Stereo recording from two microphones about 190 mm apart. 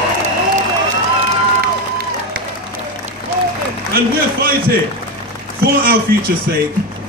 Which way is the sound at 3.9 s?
50° right (ahead or behind).